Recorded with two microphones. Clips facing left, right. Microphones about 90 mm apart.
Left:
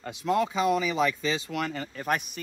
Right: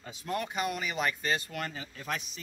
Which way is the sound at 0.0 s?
70° left (ahead or behind).